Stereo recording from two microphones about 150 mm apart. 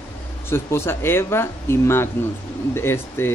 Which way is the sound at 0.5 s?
15° left (ahead or behind).